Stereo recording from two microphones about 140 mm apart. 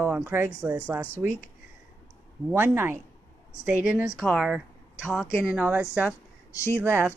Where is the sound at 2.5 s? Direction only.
15° right (ahead or behind).